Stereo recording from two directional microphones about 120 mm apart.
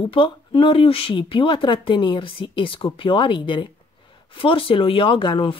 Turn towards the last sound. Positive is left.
turn(degrees=45)  # may be behind; listen again after turning